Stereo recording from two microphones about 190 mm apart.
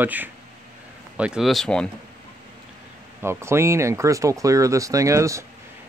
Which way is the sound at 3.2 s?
15° right (ahead or behind).